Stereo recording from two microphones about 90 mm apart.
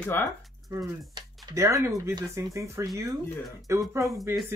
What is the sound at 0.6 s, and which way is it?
Speech, 50° right (ahead or behind).